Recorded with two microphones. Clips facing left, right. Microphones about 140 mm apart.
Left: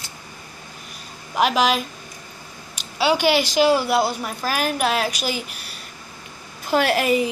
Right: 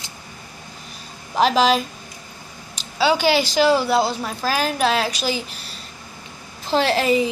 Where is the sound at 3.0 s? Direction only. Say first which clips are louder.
Right 1 dB; 35° right (ahead or behind).